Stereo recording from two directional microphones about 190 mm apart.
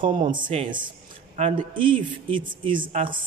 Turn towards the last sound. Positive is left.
turn(degrees=-25)  # may be behind; listen again after turning